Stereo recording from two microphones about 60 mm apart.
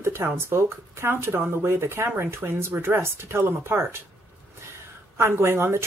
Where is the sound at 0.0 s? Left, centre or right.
Right.